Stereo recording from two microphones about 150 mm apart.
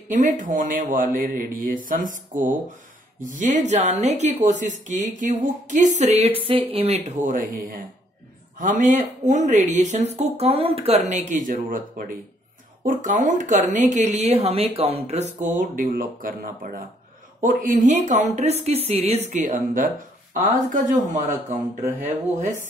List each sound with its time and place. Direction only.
0.1 s speech: 60° right (ahead or behind); by 7.0 s 40° right (ahead or behind)
7.2 s speech: 60° right (ahead or behind)